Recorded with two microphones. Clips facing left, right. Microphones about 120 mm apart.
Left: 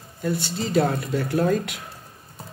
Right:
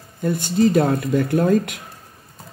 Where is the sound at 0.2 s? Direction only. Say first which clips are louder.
Right 9 dB; 50° right (ahead or behind).